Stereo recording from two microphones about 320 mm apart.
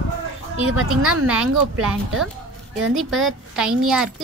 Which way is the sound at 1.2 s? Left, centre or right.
Centre.